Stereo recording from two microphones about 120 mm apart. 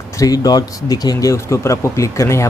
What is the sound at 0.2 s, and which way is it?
Speech, 30° left (ahead or behind).